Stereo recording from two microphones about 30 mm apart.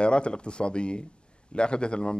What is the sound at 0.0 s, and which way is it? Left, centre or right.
Speech, left.